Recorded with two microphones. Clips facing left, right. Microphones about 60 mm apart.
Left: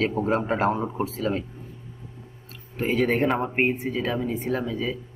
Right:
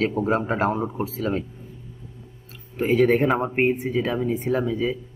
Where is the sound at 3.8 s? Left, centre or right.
Centre.